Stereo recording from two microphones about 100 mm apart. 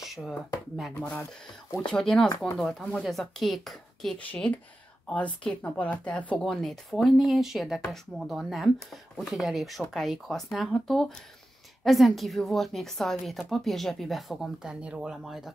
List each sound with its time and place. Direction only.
0.0 s a sound: centre (ahead or behind)
0.9 s speech: 15° left (ahead or behind)
4.3 s speech: 15° left (ahead or behind); by 15.5 s 5° right (ahead or behind)